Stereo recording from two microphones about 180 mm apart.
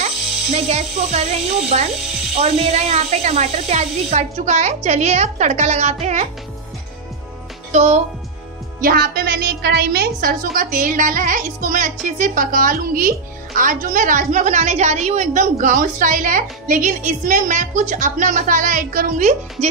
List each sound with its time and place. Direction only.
0.7 s speech: 35° right (ahead or behind)
7.7 s speech: 40° right (ahead or behind)
8.8 s a woman's voice: 60° right (ahead or behind)